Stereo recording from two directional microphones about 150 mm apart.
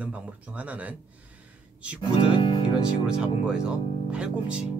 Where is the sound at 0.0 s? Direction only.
10° right (ahead or behind).